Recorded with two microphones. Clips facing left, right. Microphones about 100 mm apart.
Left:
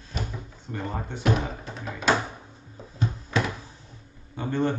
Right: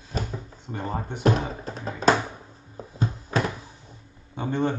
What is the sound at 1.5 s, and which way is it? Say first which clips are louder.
Music: right 2 dB; 35° right (ahead or behind).